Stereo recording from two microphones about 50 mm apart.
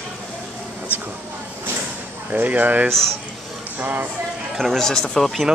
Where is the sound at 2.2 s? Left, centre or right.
Right.